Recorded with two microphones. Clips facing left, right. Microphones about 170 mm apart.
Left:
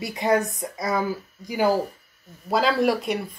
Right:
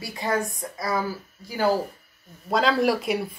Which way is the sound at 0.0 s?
20° left (ahead or behind).